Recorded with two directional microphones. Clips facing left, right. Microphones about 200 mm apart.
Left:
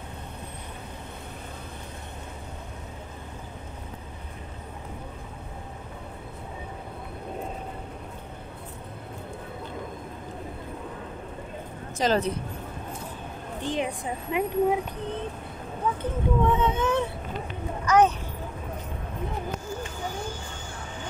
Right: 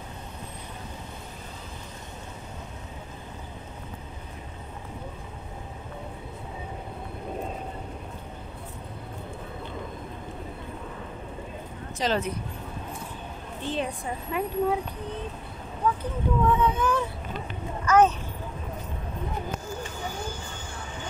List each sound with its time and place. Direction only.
12.0 s speech: 40° left (ahead or behind)
13.6 s speech: 15° left (ahead or behind)
16.0 s speech: 25° left (ahead or behind)
17.8 s speech: 10° left (ahead or behind)